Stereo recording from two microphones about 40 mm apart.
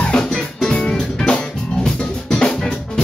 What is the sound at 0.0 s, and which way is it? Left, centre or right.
Music, left.